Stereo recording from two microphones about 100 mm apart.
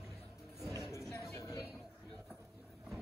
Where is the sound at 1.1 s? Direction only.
30° left (ahead or behind).